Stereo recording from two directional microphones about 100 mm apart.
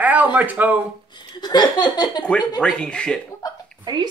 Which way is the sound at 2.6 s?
10° left (ahead or behind).